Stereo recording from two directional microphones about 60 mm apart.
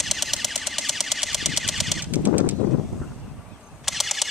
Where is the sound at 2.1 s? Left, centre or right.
Right.